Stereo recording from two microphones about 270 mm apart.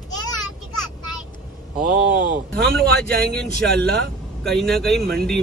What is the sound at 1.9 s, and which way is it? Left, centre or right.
Speech, right.